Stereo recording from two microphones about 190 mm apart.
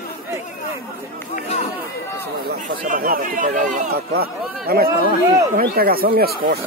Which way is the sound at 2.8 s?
45° right (ahead or behind).